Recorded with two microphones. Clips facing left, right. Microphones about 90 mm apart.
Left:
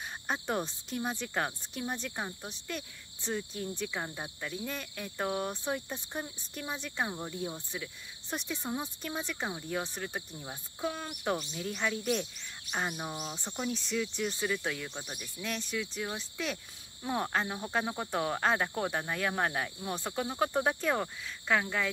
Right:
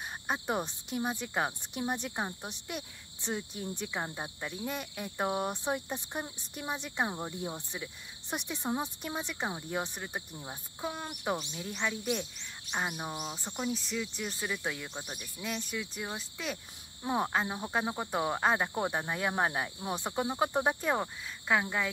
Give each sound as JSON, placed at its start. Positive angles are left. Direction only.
{"t": 0.3, "sound": "cricket", "side_deg": -10}
{"t": 10.4, "sound": "speech", "side_deg": -10}
{"t": 17.0, "sound": "cricket", "side_deg": -15}